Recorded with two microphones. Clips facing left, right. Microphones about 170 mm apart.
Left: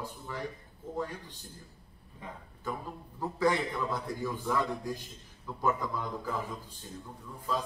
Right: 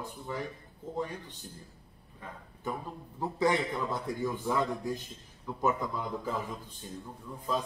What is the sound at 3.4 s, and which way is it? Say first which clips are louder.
A man's voice: even; 20° right (ahead or behind).